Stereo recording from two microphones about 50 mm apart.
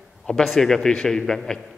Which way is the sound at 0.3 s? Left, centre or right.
Centre.